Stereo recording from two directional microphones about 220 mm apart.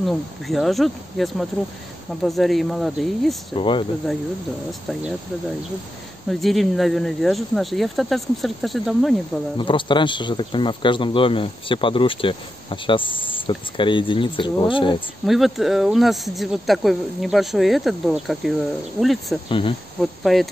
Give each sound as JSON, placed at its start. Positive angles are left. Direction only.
{"t": 0.0, "sound": "speech", "side_deg": 0}
{"t": 3.5, "sound": "speech", "side_deg": 20}
{"t": 6.4, "sound": "speech", "side_deg": 0}
{"t": 9.6, "sound": "speech", "side_deg": 20}
{"t": 15.2, "sound": "speech", "side_deg": 0}